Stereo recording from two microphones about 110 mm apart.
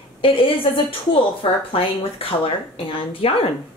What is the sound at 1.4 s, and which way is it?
A woman's voice, 60° left (ahead or behind).